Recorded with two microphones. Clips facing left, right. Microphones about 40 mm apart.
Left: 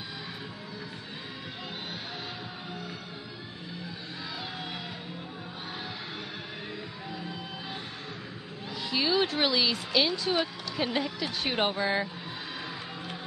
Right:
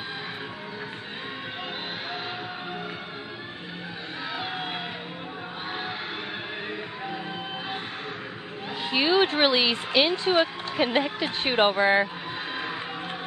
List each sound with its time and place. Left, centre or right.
8.9 s speech: right